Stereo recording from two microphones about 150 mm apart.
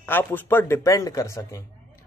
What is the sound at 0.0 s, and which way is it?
Speech, 15° left (ahead or behind).